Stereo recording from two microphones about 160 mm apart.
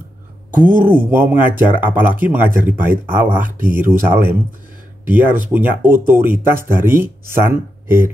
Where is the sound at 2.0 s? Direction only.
10° right (ahead or behind).